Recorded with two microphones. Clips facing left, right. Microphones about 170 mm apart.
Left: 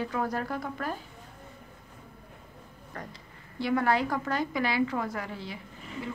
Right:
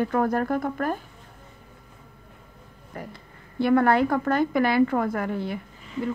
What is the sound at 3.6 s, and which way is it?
Speech, 55° right (ahead or behind).